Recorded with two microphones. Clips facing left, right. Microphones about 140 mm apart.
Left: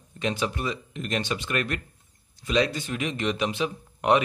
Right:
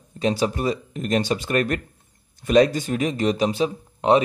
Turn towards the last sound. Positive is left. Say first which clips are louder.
# right 4 dB
turn(degrees=-30)  # may be behind; listen again after turning